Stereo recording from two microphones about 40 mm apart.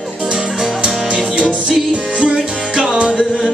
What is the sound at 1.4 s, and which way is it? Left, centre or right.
Music, centre.